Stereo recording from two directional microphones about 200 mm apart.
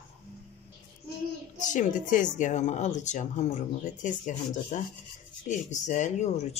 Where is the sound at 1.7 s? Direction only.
40° left (ahead or behind).